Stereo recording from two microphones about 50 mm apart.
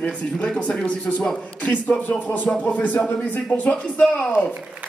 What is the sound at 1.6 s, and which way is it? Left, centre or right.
A man's voice, left.